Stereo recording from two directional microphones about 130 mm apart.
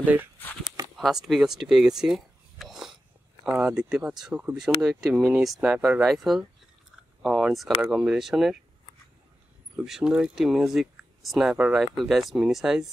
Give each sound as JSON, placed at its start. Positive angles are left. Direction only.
{"t": 0.0, "sound": "speech", "side_deg": -15}
{"t": 0.9, "sound": "speech", "side_deg": -5}
{"t": 9.8, "sound": "speech", "side_deg": -5}